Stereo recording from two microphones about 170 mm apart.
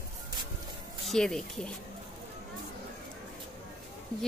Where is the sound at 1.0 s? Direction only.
5° left (ahead or behind).